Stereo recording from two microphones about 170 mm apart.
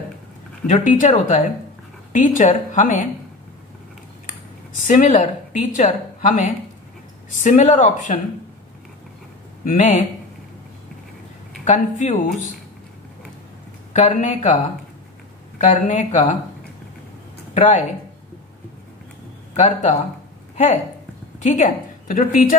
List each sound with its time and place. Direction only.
0.7 s a woman's voice: 45° left (ahead or behind)
4.8 s a woman's voice: 45° left (ahead or behind)
9.7 s a woman's voice: 45° left (ahead or behind)
11.6 s a woman's voice: 45° left (ahead or behind)
13.9 s a woman's voice: 45° left (ahead or behind)
19.5 s a woman's voice: 45° left (ahead or behind)